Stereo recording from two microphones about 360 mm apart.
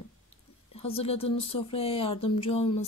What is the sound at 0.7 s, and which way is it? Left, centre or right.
Speech, centre.